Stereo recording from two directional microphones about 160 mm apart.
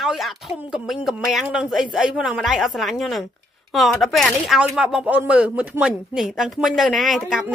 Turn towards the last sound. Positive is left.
turn(degrees=0)  # may be behind; listen again after turning